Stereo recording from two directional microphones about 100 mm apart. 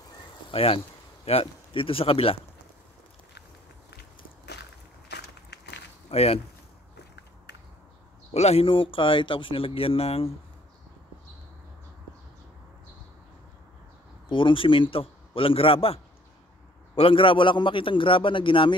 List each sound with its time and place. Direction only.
0.5 s speech: 75° left (ahead or behind)
6.0 s speech: 90° left
8.3 s speech: 90° left
14.3 s speech: 60° left (ahead or behind)